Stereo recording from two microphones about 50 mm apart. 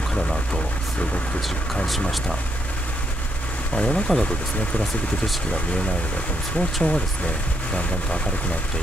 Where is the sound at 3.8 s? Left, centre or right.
Left.